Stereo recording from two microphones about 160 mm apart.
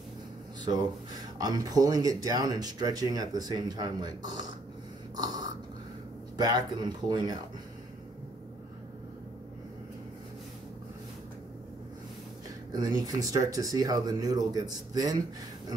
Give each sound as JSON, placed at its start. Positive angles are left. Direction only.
{"t": 0.7, "sound": "speech", "side_deg": -35}
{"t": 5.1, "sound": "a sound", "side_deg": -25}
{"t": 6.3, "sound": "speech", "side_deg": -25}
{"t": 12.7, "sound": "speech", "side_deg": -25}